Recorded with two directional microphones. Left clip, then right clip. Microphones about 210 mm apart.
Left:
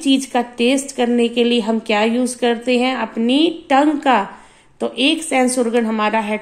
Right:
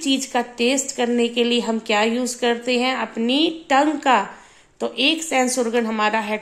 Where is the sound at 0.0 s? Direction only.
Centre (ahead or behind).